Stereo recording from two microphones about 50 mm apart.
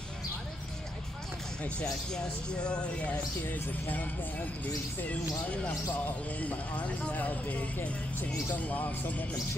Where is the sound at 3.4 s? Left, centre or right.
Left.